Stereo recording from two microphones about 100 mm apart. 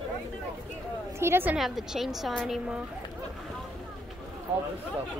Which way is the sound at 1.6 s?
5° right (ahead or behind).